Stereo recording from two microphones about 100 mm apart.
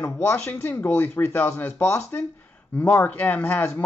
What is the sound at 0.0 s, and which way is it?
Speech, 25° left (ahead or behind).